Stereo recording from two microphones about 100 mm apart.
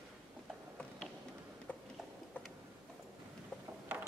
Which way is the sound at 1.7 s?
15° left (ahead or behind).